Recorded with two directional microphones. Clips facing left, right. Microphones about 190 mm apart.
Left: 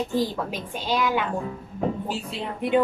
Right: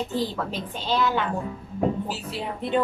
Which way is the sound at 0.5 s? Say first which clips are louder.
Even; 15° left (ahead or behind).